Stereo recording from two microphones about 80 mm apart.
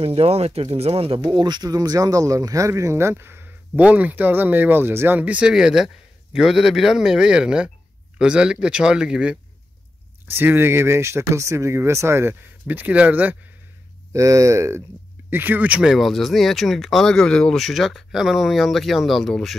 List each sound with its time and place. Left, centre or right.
1.2 s speech: right; by 5.5 s centre
5.5 s speech: centre
10.2 s speech: right
14.1 s speech: right
15.2 s speech: right
15.8 s speech: centre